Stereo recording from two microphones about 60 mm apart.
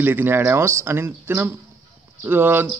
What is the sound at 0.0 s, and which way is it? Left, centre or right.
A man's voice, right.